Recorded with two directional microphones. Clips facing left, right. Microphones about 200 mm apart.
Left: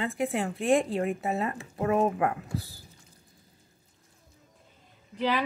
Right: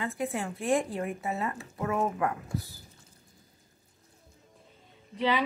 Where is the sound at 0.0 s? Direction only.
25° left (ahead or behind).